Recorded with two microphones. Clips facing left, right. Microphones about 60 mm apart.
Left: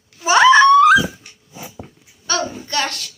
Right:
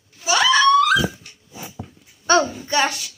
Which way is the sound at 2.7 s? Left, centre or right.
Centre.